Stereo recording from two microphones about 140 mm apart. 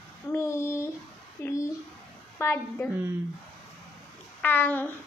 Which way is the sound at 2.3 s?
15° left (ahead or behind).